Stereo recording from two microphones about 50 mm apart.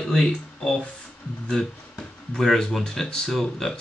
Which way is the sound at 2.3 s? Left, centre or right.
Centre.